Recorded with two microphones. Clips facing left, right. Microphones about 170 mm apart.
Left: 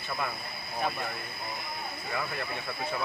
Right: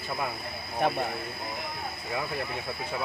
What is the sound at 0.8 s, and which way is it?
Speech, 65° right (ahead or behind).